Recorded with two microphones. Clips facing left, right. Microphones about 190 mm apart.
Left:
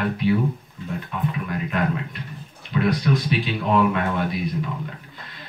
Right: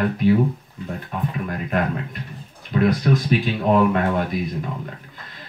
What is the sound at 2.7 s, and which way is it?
Speech, 45° right (ahead or behind).